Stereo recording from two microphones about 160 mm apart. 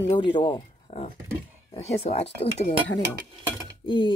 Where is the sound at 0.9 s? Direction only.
45° left (ahead or behind).